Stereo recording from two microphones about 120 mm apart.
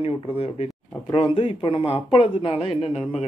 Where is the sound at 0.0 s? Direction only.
55° left (ahead or behind).